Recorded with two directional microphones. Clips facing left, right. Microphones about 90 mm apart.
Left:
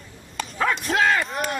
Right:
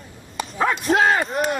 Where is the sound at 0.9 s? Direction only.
40° right (ahead or behind).